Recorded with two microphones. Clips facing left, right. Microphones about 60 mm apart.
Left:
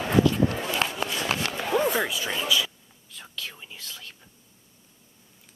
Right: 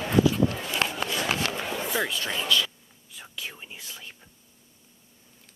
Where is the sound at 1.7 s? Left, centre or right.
Left.